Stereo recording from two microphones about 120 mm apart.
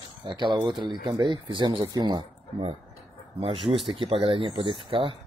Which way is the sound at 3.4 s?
50° right (ahead or behind).